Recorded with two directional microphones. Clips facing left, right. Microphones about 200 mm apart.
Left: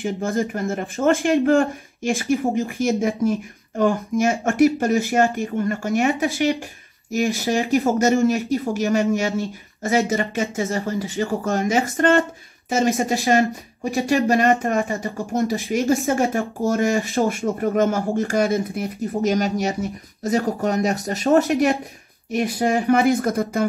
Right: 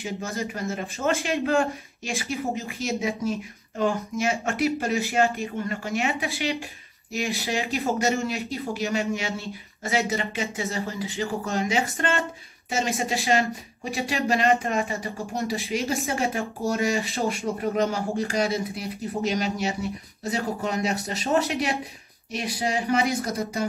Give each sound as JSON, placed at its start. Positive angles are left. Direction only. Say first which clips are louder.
{"t": 0.0, "sound": "speech", "louder": "left 8 dB", "side_deg": 55}